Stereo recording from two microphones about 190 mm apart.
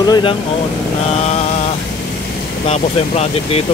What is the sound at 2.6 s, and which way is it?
Speech, 35° left (ahead or behind).